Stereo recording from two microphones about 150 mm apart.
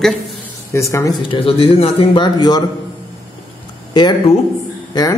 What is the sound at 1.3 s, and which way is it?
Speech, 40° left (ahead or behind).